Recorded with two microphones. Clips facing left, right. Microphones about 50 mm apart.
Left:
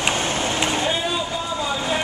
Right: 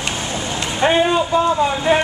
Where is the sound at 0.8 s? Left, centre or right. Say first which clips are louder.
Right 8 dB; right.